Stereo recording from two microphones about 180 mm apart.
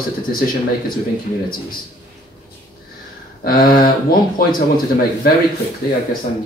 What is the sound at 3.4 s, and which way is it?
Speech, 55° left (ahead or behind).